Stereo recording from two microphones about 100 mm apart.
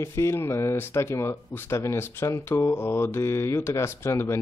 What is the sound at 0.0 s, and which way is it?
Speech, 30° left (ahead or behind).